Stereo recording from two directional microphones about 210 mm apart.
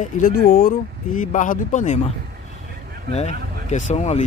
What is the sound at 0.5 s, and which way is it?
Speech, 45° left (ahead or behind).